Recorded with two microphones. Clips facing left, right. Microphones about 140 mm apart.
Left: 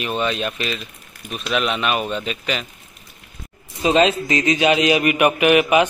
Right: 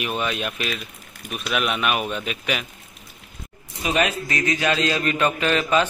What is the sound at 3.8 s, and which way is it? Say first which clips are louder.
A man's voice: left 7 dB; 25° left (ahead or behind).